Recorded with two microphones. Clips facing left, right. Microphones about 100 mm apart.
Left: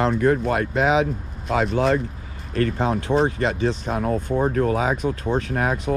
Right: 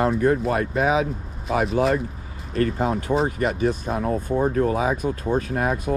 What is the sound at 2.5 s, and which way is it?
Speech, 35° right (ahead or behind).